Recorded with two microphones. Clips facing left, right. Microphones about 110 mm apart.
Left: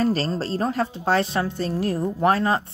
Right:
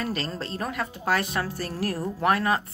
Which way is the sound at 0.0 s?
35° left (ahead or behind).